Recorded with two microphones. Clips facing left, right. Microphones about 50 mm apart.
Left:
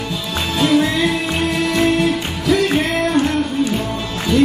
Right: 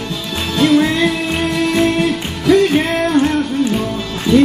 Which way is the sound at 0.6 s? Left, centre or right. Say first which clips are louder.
Right 3 dB; centre.